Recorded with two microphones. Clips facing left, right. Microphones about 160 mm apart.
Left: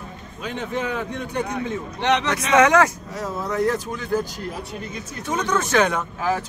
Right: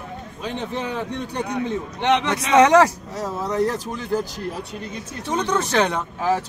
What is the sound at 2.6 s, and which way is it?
Speech, 35° right (ahead or behind).